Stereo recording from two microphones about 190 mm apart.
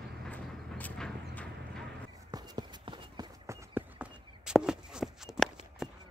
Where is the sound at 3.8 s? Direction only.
5° right (ahead or behind).